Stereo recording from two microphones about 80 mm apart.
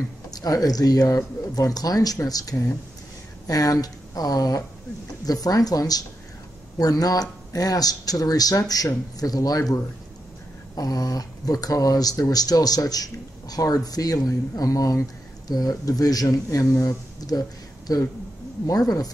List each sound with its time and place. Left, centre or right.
0.3 s a woman's voice: left
10.8 s speech: left